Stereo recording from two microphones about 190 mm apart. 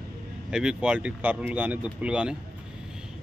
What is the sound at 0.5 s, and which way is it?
Speech, 5° right (ahead or behind).